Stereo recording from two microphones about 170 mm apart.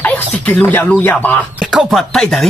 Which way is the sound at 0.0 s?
10° left (ahead or behind).